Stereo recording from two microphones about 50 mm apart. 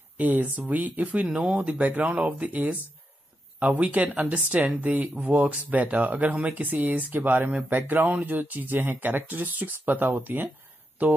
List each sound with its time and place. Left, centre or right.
0.2 s speech: right